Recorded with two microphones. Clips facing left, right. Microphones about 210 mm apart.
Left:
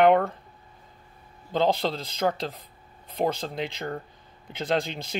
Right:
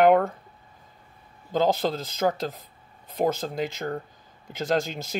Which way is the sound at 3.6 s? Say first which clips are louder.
Right 2 dB; 45° right (ahead or behind).